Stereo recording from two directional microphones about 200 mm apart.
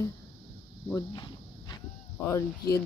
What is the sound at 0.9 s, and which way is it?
Insect, 20° left (ahead or behind).